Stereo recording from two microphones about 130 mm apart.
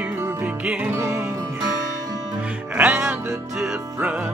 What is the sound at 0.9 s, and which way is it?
Music, 20° right (ahead or behind).